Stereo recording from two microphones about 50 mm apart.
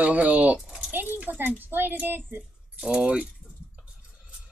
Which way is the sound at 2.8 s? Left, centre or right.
Centre.